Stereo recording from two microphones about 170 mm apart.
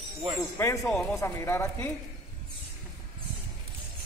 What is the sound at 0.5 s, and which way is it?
Speech, 15° left (ahead or behind).